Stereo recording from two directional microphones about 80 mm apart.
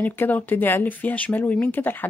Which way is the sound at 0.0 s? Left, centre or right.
Left.